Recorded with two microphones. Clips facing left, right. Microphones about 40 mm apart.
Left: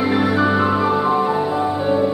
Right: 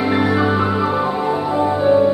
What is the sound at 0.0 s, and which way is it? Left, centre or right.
Music, centre.